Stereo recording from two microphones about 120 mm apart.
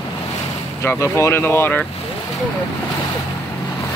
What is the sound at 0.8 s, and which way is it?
Speech, 20° left (ahead or behind).